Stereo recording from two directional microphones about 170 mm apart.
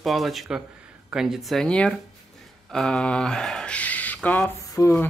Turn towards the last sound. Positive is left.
turn(degrees=15)  # may be behind; listen again after turning